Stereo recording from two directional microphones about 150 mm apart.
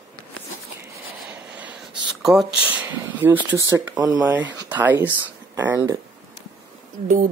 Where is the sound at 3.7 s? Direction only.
15° right (ahead or behind).